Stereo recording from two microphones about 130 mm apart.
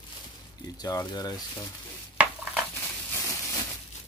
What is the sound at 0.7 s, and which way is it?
Speech, 30° left (ahead or behind).